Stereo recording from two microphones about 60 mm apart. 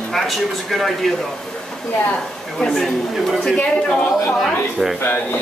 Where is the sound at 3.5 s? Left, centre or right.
Left.